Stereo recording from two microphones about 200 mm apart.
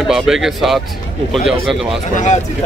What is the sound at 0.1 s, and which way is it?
Speech, centre (ahead or behind).